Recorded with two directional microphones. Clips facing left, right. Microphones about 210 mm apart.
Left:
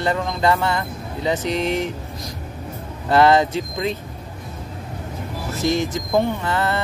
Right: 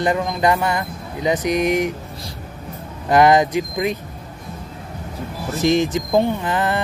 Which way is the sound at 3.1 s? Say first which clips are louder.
Right 1 dB; 15° right (ahead or behind).